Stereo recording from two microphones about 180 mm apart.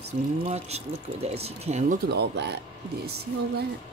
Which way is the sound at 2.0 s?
65° right (ahead or behind).